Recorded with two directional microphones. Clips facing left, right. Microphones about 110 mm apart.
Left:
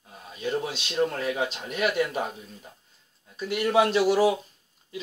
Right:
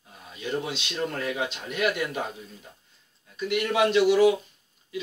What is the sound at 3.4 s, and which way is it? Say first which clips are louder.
Speech: left 1 dB; 40° left (ahead or behind).